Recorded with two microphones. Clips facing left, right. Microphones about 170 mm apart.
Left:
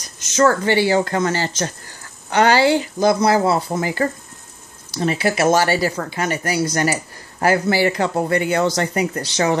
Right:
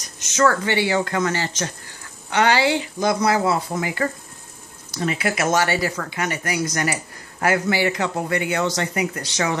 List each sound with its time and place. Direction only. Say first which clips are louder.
0.4 s speech: left 3 dB; 35° left (ahead or behind)